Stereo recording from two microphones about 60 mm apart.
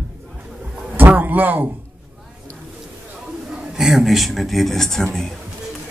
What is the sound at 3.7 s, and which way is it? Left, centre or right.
Speech, centre.